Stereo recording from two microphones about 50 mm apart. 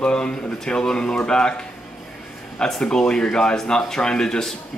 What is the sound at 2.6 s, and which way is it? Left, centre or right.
Speech, centre.